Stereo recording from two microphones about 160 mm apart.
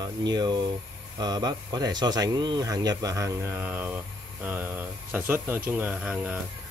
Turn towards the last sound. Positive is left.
turn(degrees=-5)  # may be behind; listen again after turning